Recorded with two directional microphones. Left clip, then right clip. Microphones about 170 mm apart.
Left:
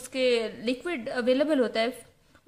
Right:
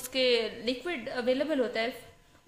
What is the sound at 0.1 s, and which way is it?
A woman's voice, 25° left (ahead or behind).